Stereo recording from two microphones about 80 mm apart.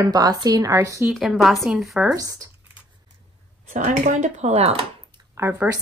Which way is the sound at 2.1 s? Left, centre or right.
Right.